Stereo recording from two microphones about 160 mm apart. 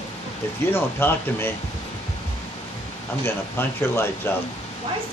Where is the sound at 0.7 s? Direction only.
15° left (ahead or behind).